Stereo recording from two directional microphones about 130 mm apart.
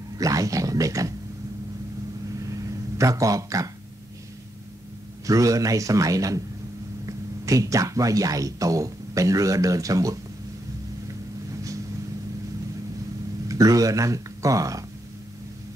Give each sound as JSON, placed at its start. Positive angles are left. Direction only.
{"t": 0.2, "sound": "a man's voice", "side_deg": -25}
{"t": 2.4, "sound": "a sound", "side_deg": -25}
{"t": 5.2, "sound": "a man's voice", "side_deg": -25}
{"t": 13.5, "sound": "speech", "side_deg": -25}